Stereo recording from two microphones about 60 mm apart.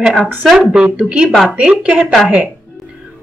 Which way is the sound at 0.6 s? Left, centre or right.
Centre.